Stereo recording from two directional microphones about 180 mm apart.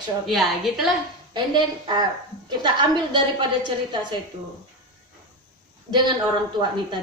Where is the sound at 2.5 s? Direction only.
25° right (ahead or behind).